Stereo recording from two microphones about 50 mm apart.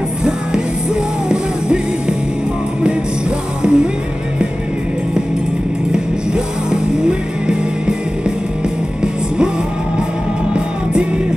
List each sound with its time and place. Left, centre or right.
1.3 s music: centre
5.9 s music: centre
8.6 s music: centre